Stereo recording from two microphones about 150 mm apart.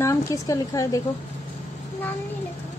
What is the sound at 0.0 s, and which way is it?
Speech, 20° left (ahead or behind).